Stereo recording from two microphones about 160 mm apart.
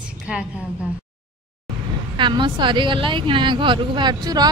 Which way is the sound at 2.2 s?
30° right (ahead or behind).